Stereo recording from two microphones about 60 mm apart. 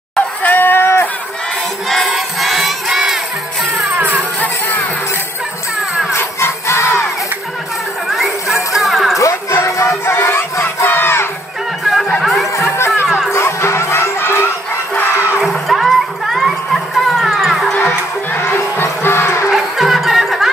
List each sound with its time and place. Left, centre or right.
0.4 s a sound: left
1.9 s crowd: centre
3.9 s music: right
6.1 s jingle bell: left
8.1 s a sound: centre
9.2 s music: left
9.7 s crowd: left
11.8 s music: centre
12.9 s music: centre
13.3 s crowd: left
15.4 s music: centre
18.4 s crowd: left
19.5 s music: centre